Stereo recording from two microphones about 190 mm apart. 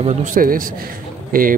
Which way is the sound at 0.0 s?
45° right (ahead or behind).